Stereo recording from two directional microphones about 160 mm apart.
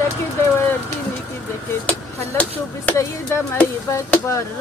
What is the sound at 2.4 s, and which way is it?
Speech, 15° left (ahead or behind).